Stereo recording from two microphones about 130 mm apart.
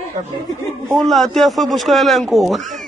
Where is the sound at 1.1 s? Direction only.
Centre (ahead or behind).